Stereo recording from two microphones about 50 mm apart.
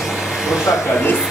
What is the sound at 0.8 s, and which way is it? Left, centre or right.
Speech, left.